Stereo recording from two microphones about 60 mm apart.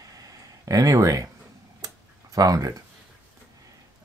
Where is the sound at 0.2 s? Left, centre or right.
Right.